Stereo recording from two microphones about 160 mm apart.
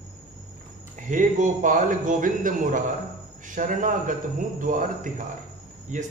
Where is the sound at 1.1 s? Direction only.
55° right (ahead or behind).